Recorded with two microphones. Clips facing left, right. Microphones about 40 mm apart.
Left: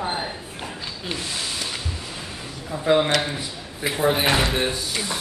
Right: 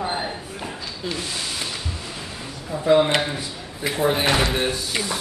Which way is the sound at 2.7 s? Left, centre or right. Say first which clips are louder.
Right 2 dB; left.